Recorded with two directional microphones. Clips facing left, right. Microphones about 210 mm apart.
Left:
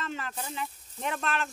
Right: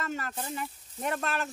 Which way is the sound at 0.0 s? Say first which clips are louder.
Right 2 dB; 40° right (ahead or behind).